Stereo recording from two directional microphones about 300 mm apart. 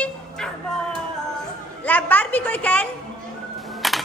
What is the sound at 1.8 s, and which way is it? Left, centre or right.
A woman's voice, centre.